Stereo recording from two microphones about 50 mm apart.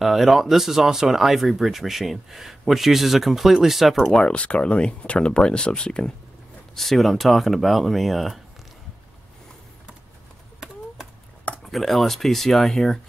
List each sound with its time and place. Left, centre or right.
0.0 s speech: centre
3.9 s speech: centre
4.3 s speech: left
6.7 s speech: centre
11.7 s speech: centre